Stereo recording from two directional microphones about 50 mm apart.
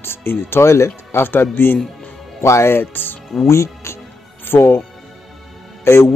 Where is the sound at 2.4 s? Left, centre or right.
Left.